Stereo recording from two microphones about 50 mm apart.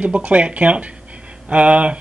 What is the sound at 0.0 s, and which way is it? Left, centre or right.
Speech, right.